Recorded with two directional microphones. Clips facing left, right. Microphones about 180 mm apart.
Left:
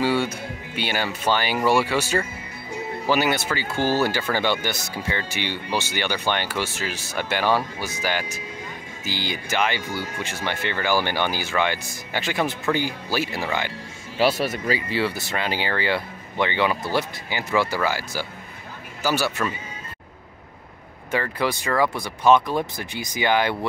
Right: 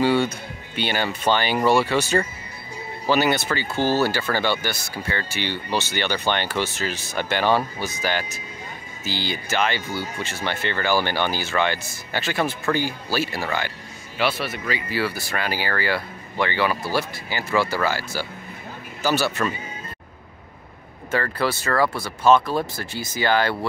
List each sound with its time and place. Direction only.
0.0 s speech: 10° left (ahead or behind)
14.1 s speech: 40° left (ahead or behind)
14.9 s speech: 25° left (ahead or behind)
21.1 s speech: 15° left (ahead or behind)